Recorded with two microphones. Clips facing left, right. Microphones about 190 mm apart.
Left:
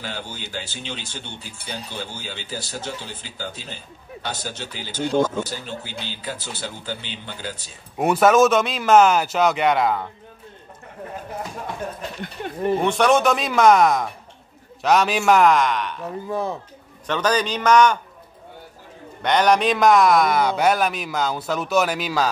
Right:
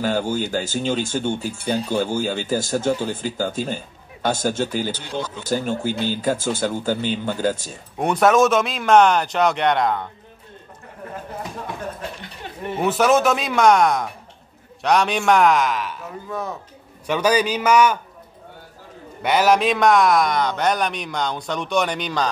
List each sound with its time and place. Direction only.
0.0 s speech: 45° right (ahead or behind)
4.9 s speech: 50° left (ahead or behind)
5.4 s speech: 50° right (ahead or behind)
8.0 s a man's voice: 5° left (ahead or behind)
12.7 s a man's voice: 5° right (ahead or behind)
16.3 s speech: 30° left (ahead or behind)
17.0 s a man's voice: 10° right (ahead or behind)
19.2 s a man's voice: 5° right (ahead or behind)